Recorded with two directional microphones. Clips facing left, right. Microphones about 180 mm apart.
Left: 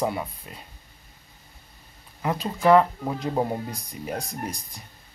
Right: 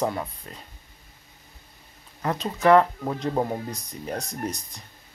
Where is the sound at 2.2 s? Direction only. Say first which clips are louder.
Even; 5° left (ahead or behind).